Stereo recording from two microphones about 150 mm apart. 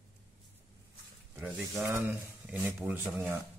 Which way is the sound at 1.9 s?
15° right (ahead or behind).